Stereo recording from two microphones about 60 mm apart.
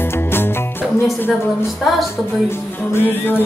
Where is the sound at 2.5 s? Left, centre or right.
Left.